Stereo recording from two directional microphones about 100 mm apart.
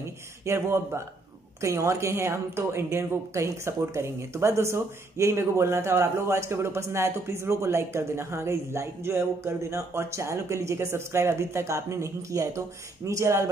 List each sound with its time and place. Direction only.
0.5 s speech: 30° right (ahead or behind)